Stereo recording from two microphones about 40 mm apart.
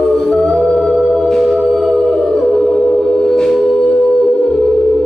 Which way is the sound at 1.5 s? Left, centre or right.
Centre.